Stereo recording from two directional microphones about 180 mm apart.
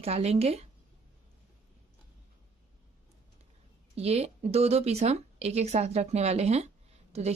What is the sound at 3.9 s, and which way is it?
Speech, 35° right (ahead or behind).